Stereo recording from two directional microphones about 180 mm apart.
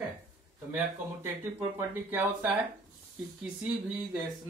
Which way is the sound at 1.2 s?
15° right (ahead or behind).